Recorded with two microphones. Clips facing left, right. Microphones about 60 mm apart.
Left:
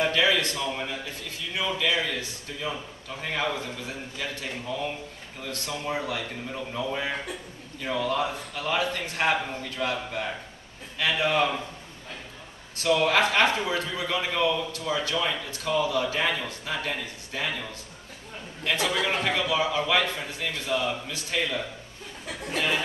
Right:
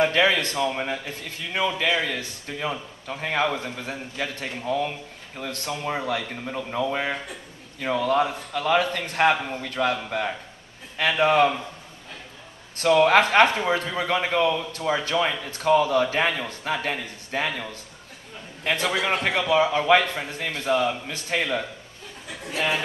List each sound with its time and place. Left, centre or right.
0.0 s a sound: right
1.5 s a man's voice: right
12.7 s a man's voice: right